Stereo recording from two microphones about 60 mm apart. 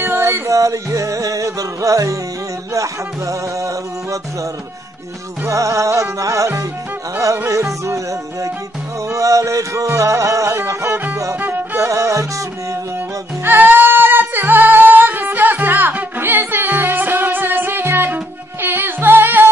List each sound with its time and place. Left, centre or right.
0.0 s music: right
0.5 s music: right
11.3 s music: right
11.7 s music: right
13.4 s singing: right